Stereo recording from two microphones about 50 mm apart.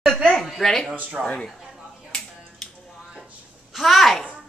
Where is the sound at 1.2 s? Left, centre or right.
Left.